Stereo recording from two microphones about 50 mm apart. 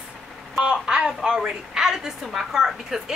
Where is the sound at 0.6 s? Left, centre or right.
Centre.